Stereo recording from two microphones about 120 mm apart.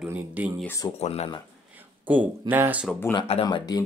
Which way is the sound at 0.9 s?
60° left (ahead or behind).